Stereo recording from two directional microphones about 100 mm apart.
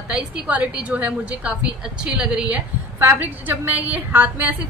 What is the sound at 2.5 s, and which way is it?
A man's voice, 20° right (ahead or behind).